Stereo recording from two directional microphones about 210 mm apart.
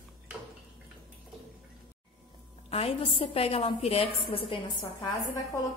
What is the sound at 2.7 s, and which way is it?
A woman's voice, 25° left (ahead or behind).